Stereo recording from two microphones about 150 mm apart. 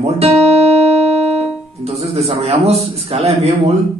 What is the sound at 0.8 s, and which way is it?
Music, 45° right (ahead or behind).